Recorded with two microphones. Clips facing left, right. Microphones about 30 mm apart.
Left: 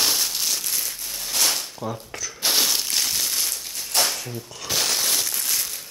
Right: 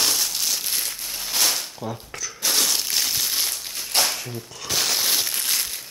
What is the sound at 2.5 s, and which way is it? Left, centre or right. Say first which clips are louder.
Crumpling: even; centre.